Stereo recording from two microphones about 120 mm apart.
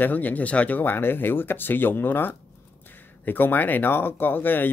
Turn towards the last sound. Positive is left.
turn(degrees=15)  # may be behind; listen again after turning